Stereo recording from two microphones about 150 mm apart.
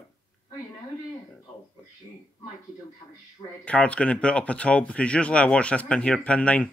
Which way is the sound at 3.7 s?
10° left (ahead or behind).